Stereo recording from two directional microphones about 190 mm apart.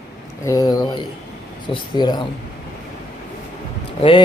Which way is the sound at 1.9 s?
20° left (ahead or behind).